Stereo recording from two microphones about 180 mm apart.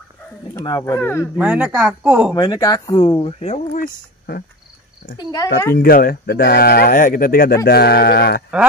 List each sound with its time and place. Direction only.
0.6 s speech: 20° left (ahead or behind)
1.3 s speech: 5° right (ahead or behind)
2.3 s speech: 25° left (ahead or behind); by 4.4 s 50° left (ahead or behind)
5.1 s speech: 20° left (ahead or behind)
5.8 s speech: 55° left (ahead or behind)